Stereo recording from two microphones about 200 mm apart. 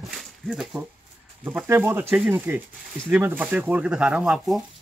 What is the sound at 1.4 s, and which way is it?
Speech, 10° right (ahead or behind).